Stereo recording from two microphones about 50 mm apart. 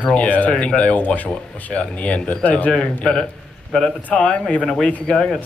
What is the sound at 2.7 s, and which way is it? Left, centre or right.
A man's voice, centre.